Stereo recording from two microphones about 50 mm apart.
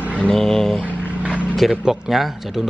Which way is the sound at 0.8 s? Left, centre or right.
Right.